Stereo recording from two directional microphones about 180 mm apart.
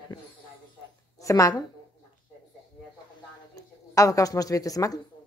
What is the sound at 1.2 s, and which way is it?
Speech, 15° left (ahead or behind).